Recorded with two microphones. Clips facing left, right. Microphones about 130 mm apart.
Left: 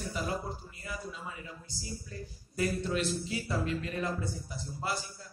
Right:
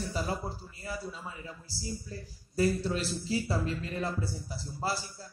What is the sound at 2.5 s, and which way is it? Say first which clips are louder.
Speech: right 3 dB; 30° right (ahead or behind).